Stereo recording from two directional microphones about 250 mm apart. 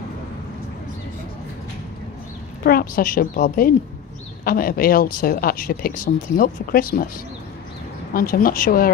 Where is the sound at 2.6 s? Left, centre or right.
Left.